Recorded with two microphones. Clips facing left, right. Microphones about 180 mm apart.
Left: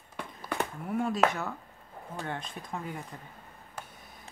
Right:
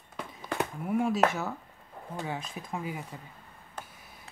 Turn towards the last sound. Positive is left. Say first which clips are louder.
# right 2 dB
turn(degrees=-5)  # may be behind; listen again after turning